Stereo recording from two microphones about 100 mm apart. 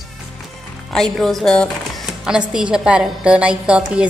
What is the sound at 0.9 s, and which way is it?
Speech, 5° left (ahead or behind).